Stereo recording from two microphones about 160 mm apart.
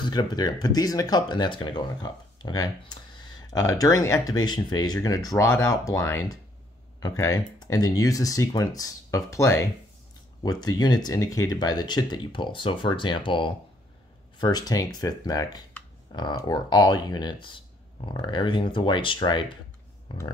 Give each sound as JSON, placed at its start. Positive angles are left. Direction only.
{"t": 0.0, "sound": "speech", "side_deg": 25}